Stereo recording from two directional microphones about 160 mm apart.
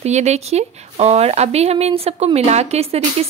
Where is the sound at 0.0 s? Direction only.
45° right (ahead or behind).